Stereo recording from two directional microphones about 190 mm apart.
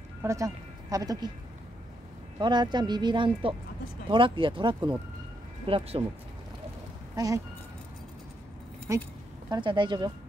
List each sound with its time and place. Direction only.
0.2 s speech: 15° right (ahead or behind)
2.3 s speech: 25° right (ahead or behind)
7.2 s speech: 20° right (ahead or behind)
8.9 s speech: 15° right (ahead or behind)